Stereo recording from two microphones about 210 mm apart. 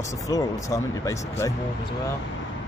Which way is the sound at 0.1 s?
15° left (ahead or behind).